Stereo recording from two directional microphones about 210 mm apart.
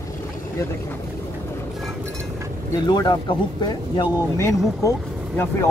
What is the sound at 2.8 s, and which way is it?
Speech, 20° left (ahead or behind).